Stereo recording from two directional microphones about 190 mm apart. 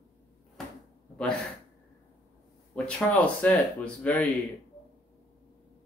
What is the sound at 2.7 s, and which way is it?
Speech, 5° left (ahead or behind).